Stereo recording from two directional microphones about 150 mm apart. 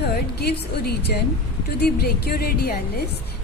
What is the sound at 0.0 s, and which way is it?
Speech, 90° left.